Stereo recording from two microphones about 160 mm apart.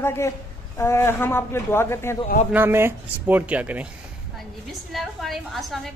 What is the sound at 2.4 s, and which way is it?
A woman's voice, 15° right (ahead or behind).